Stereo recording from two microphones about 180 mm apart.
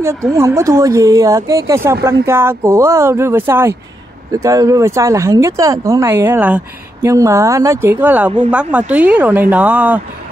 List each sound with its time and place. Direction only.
0.0 s speech: 15° right (ahead or behind)